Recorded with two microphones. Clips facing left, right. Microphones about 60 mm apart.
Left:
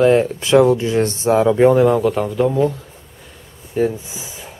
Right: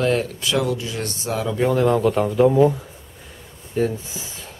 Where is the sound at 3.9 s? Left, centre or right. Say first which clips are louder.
Left 1 dB; centre.